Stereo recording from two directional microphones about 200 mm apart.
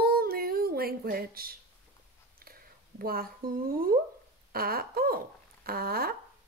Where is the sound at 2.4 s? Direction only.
50° right (ahead or behind).